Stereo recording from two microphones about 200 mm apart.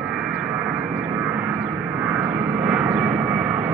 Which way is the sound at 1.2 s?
5° right (ahead or behind).